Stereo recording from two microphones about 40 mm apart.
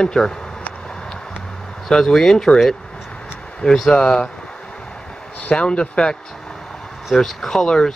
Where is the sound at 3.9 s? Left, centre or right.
Left.